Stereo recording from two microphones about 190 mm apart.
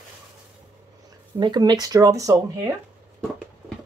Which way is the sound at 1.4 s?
20° right (ahead or behind).